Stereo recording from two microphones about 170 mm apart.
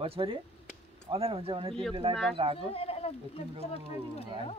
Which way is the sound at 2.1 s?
Centre (ahead or behind).